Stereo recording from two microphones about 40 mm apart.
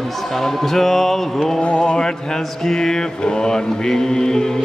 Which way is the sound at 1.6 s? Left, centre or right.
Left.